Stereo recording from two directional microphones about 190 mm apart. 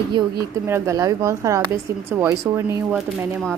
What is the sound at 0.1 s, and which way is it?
A woman's voice, 15° right (ahead or behind).